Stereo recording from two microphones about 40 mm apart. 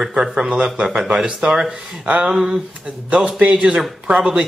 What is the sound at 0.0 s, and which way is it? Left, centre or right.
Speech, centre.